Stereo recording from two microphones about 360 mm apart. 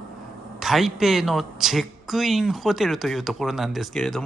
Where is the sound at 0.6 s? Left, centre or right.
Centre.